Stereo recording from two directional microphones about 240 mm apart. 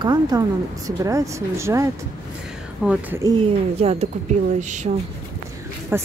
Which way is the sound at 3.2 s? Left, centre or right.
Right.